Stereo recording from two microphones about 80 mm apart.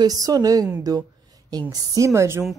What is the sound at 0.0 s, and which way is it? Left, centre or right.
Speech, right.